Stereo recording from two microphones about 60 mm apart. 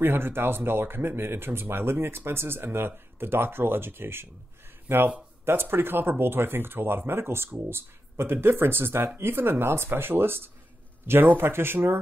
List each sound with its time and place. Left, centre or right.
0.0 s speech: right